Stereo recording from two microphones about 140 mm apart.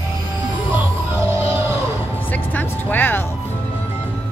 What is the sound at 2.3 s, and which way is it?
Speech, 15° left (ahead or behind).